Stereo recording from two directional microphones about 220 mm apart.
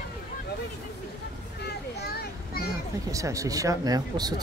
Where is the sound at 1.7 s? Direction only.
45° left (ahead or behind).